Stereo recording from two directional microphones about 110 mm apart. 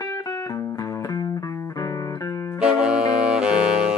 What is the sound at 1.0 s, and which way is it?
Music, 35° left (ahead or behind).